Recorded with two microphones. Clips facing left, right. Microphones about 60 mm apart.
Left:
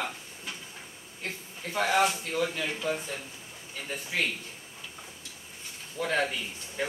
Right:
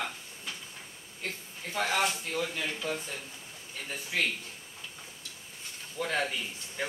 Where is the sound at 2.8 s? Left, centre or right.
Left.